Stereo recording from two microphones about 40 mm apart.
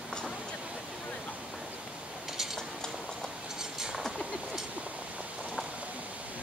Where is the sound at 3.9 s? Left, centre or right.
Centre.